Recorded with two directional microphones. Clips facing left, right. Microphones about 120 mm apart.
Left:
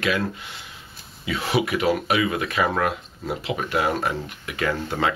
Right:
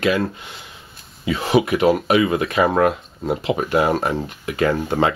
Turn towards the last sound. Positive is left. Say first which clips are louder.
# right 6 dB
turn(degrees=-35)  # may be behind; listen again after turning